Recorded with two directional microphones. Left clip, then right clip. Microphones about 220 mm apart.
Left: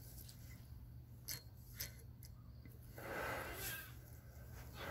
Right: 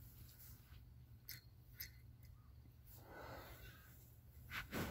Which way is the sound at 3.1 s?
25° left (ahead or behind).